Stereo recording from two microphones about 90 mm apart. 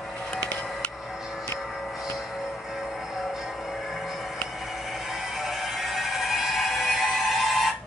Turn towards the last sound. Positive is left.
turn(degrees=0)  # may be behind; listen again after turning